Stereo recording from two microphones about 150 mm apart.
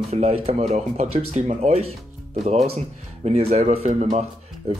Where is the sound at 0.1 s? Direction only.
45° right (ahead or behind).